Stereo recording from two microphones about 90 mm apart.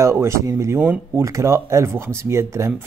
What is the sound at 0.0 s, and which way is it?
Speech, 30° right (ahead or behind).